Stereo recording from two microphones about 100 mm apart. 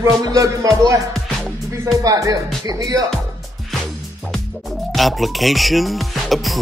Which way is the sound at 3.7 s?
Centre (ahead or behind).